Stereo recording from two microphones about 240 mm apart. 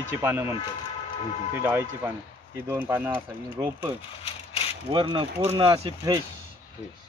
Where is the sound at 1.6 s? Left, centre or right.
Centre.